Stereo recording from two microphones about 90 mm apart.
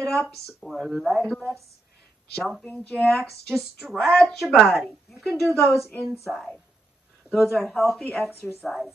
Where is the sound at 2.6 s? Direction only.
10° left (ahead or behind).